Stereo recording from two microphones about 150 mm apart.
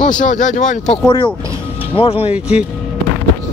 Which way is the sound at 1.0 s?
30° left (ahead or behind).